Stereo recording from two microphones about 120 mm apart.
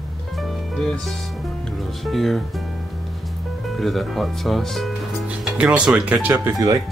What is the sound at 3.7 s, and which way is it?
Speech, centre (ahead or behind).